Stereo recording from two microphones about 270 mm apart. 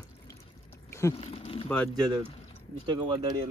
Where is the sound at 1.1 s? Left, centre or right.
Left.